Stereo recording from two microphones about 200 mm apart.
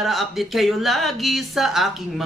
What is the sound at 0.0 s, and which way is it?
A woman's voice, centre (ahead or behind).